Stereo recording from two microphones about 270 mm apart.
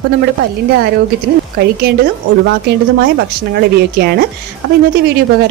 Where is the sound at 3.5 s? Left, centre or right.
Right.